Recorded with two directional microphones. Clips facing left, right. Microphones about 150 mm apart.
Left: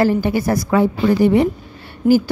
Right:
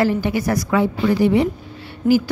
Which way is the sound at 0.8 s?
45° left (ahead or behind).